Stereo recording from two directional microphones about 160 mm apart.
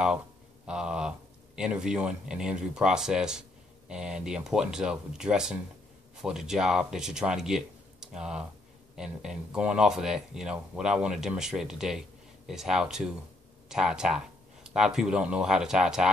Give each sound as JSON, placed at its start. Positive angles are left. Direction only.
{"t": 0.7, "sound": "speech", "side_deg": -5}